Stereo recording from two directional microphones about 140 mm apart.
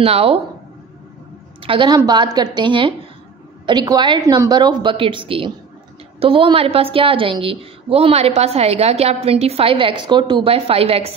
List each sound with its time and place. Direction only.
0.0 s a woman's voice: 45° right (ahead or behind)
1.6 s a woman's voice: 40° right (ahead or behind)